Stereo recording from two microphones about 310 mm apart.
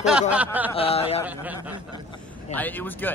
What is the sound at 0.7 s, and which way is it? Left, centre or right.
Speech, centre.